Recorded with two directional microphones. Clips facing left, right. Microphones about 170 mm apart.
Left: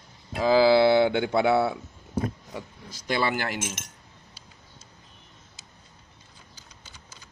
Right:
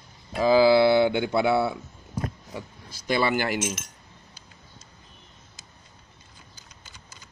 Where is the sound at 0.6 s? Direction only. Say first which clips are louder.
Left 1 dB; 25° left (ahead or behind).